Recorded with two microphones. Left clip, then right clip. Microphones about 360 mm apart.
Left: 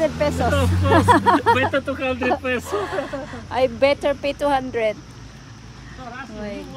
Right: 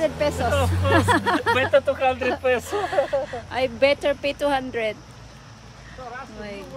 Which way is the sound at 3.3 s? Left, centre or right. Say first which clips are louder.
Left 4 dB; centre.